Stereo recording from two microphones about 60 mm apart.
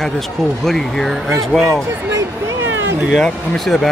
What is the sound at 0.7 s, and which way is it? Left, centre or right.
Speech, centre.